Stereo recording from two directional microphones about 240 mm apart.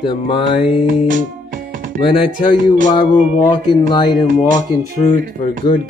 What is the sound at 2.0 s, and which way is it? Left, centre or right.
Music, left.